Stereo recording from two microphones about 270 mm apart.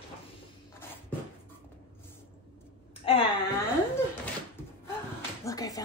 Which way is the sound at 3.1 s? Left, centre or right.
Centre.